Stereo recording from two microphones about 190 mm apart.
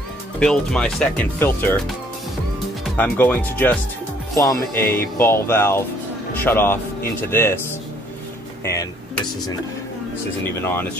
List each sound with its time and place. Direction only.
0.4 s speech: 5° left (ahead or behind)
2.8 s a man's voice: 10° left (ahead or behind)
8.6 s speech: 15° left (ahead or behind)
10.6 s speech: 10° left (ahead or behind)